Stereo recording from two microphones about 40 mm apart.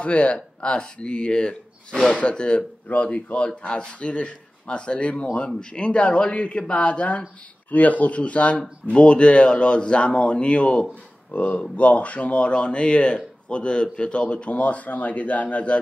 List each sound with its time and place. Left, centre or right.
0.0 s speech: left